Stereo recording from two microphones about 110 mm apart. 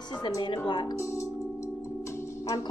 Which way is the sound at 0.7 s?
40° left (ahead or behind).